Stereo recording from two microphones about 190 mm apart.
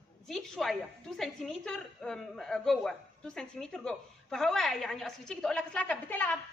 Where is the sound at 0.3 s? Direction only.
Centre (ahead or behind).